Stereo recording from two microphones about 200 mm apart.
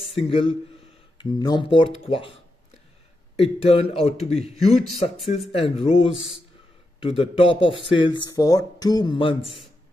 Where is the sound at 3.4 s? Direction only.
30° left (ahead or behind).